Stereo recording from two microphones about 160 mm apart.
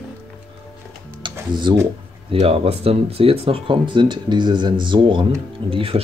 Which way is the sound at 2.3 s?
40° right (ahead or behind).